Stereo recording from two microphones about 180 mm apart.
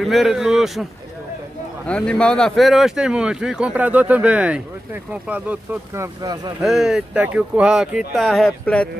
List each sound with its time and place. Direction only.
0.0 s speech: centre (ahead or behind)
1.9 s speech: 5° left (ahead or behind)
6.2 s speech: 20° right (ahead or behind)
6.6 s speech: centre (ahead or behind)